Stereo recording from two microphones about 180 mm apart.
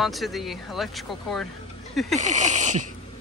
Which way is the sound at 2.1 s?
40° right (ahead or behind).